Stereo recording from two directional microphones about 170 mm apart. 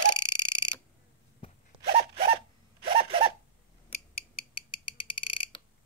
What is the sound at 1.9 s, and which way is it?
Zipper, 35° right (ahead or behind).